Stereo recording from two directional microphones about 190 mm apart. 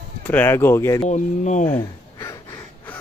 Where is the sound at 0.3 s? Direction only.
10° left (ahead or behind).